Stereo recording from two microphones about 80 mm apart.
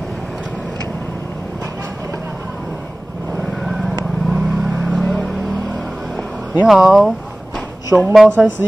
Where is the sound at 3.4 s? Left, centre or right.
Centre.